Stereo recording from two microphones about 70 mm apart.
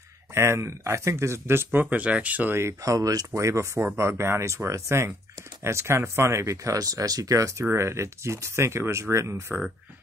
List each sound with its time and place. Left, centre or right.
0.3 s speech: right
2.8 s speech: right
3.3 s speech: right